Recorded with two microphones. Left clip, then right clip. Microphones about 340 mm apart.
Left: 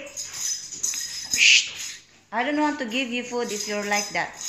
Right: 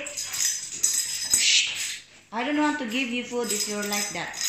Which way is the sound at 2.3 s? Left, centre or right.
Centre.